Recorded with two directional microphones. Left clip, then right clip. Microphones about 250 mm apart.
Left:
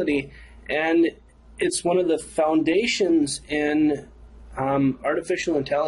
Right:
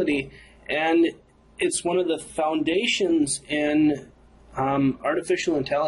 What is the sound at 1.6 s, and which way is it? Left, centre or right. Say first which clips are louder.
Speech: left 2 dB; left.